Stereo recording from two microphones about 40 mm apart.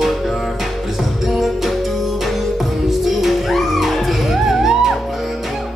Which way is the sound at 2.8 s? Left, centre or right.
Centre.